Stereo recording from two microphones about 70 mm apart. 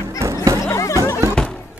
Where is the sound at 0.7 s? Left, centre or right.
Left.